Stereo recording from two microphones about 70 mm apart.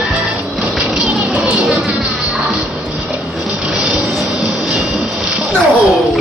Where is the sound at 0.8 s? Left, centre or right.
Centre.